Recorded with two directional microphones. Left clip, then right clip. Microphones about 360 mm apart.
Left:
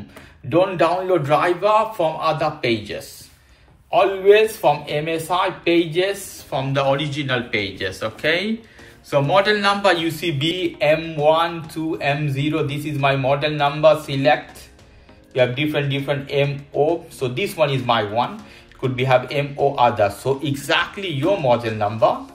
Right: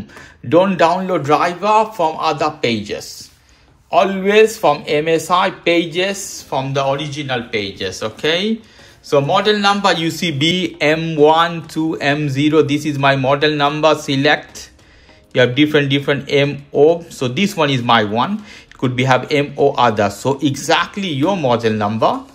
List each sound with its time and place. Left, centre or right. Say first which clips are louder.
0.5 s a man's voice: right 5 dB; right